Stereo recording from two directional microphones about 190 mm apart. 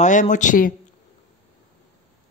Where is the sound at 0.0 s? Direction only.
40° left (ahead or behind).